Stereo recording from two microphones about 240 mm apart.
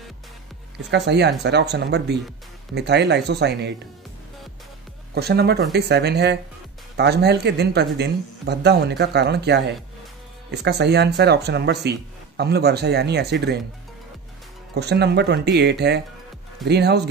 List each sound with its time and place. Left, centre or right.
0.8 s speech: right
5.1 s speech: right
14.7 s speech: right